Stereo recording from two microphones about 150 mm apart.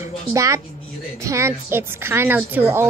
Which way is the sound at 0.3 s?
20° right (ahead or behind).